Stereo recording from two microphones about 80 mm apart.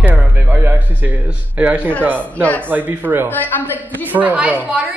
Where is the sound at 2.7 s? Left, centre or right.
Right.